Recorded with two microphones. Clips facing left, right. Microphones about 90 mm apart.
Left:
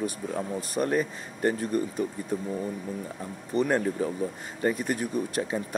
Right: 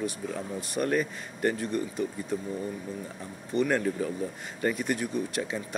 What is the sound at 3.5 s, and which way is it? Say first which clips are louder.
Speech: left 1 dB; 30° left (ahead or behind).